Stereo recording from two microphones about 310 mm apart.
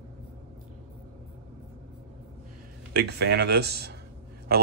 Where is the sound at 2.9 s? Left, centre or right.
Right.